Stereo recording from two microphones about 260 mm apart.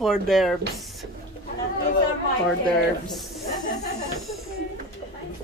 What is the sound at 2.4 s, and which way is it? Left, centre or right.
Speech, centre.